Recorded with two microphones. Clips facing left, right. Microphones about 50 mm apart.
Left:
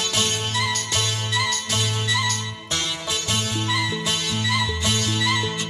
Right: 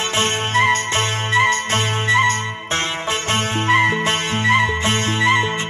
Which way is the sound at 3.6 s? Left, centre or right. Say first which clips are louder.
Right 12 dB; right.